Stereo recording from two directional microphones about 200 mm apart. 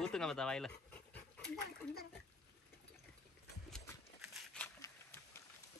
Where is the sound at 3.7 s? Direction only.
5° left (ahead or behind).